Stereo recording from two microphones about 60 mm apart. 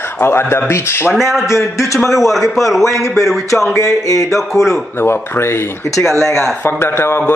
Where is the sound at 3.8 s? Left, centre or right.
Left.